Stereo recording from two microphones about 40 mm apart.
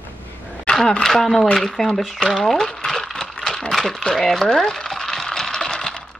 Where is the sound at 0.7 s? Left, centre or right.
Centre.